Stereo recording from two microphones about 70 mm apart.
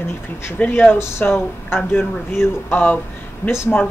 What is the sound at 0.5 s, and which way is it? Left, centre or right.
Speech, left.